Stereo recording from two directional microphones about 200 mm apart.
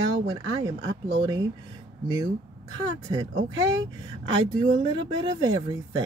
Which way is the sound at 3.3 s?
75° right (ahead or behind).